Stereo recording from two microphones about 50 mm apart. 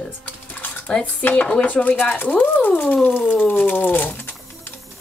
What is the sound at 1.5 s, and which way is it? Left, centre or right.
Speech, left.